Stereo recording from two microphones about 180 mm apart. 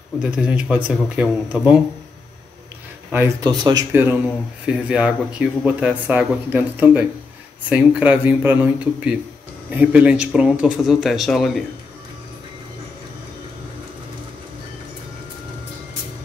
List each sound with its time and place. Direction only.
0.2 s speech: 5° right (ahead or behind)
3.4 s speech: 25° right (ahead or behind)
3.9 s speech: 10° right (ahead or behind)